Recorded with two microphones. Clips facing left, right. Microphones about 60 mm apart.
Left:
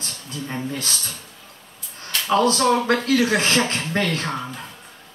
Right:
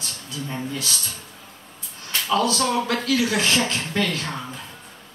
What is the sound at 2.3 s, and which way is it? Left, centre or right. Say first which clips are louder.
A man's voice: left 4 dB; left.